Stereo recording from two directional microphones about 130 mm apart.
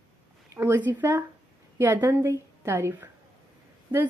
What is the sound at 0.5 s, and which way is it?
A woman's voice, 20° right (ahead or behind).